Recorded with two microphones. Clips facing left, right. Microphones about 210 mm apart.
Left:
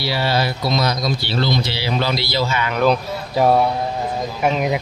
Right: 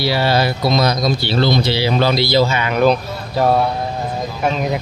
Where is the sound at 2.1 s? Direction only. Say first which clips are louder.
Right 6 dB; 20° right (ahead or behind).